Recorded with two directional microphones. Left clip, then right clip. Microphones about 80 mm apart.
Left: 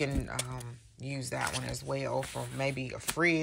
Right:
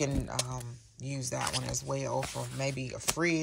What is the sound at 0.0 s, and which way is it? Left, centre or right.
Speech, right.